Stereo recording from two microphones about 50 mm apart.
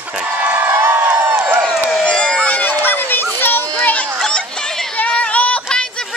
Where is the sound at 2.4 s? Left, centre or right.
Left.